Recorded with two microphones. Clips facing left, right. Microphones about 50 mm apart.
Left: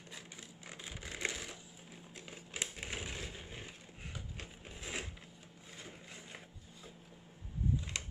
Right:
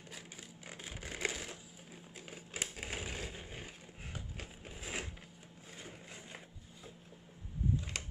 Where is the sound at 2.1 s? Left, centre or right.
Centre.